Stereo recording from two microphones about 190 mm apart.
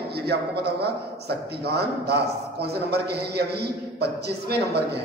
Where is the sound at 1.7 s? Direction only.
60° right (ahead or behind).